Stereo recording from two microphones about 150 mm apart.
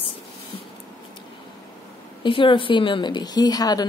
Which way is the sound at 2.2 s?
35° left (ahead or behind).